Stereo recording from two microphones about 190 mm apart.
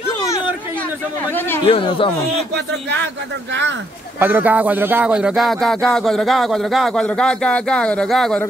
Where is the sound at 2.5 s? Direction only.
65° right (ahead or behind).